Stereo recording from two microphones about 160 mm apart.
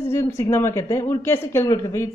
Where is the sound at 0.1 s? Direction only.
15° left (ahead or behind).